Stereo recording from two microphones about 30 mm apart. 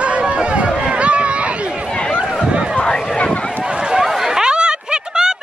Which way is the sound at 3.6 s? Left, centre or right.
Right.